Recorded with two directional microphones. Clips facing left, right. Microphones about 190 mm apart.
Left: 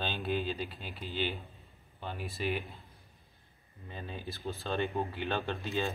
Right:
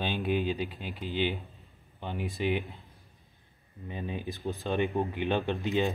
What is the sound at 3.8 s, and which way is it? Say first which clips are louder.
Speech: right 6 dB; 15° right (ahead or behind).